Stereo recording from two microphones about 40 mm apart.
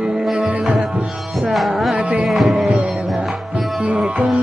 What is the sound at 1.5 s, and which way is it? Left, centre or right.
Music, centre.